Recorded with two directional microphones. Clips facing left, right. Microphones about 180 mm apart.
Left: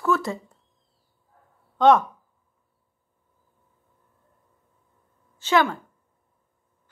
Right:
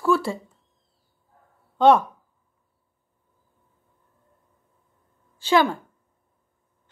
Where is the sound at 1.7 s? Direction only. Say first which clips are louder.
Right 1 dB; 10° right (ahead or behind).